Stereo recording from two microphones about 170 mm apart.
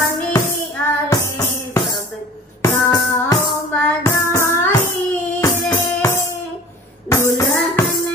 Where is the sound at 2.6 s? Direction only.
20° left (ahead or behind).